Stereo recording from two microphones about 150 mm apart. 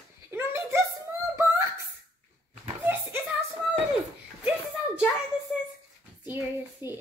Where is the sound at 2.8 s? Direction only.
10° right (ahead or behind).